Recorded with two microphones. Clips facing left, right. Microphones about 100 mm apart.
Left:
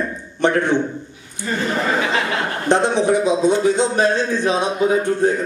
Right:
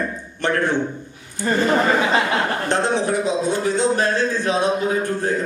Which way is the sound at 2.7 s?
20° left (ahead or behind).